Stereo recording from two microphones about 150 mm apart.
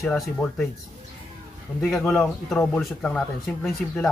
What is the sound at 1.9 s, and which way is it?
Speech, 5° left (ahead or behind).